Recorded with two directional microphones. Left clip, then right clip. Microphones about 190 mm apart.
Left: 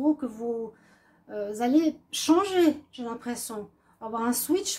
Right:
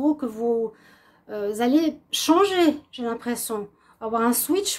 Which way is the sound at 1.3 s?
30° right (ahead or behind).